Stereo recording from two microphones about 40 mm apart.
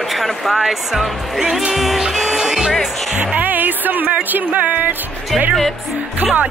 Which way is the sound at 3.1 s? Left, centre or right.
Right.